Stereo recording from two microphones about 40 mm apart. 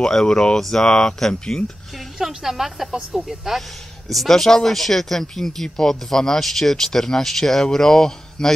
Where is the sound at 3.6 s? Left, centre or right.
Centre.